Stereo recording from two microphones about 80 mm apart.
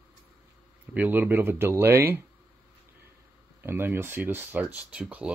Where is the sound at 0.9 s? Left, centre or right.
Right.